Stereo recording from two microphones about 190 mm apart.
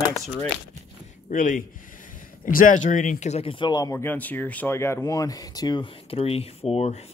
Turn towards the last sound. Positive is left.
turn(degrees=35)  # may be behind; listen again after turning